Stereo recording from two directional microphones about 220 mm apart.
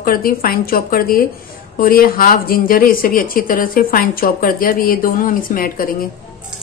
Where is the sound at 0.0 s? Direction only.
40° left (ahead or behind).